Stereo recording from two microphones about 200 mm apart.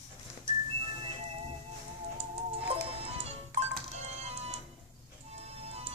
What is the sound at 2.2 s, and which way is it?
Music, 30° right (ahead or behind).